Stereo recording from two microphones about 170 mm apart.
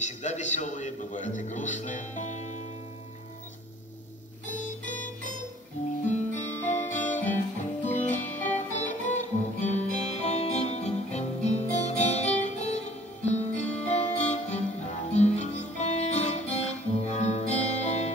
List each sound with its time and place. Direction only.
0.0 s a man's voice: 45° left (ahead or behind)
4.5 s music: 45° left (ahead or behind)
11.7 s guitar: 45° left (ahead or behind)
12.4 s music: 40° left (ahead or behind)
15.1 s guitar: 40° left (ahead or behind)